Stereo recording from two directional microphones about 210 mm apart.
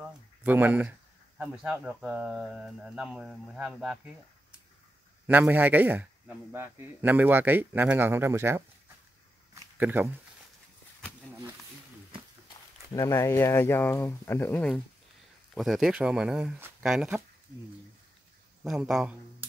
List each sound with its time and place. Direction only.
0.4 s a man's voice: 10° right (ahead or behind)
5.2 s a man's voice: 10° right (ahead or behind)
9.8 s a man's voice: 10° right (ahead or behind)
12.9 s speech: 15° left (ahead or behind); by 17.2 s 5° right (ahead or behind)
18.6 s speech: centre (ahead or behind)